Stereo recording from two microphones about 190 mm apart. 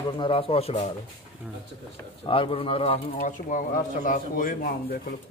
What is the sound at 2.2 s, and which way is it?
Speech, 25° left (ahead or behind).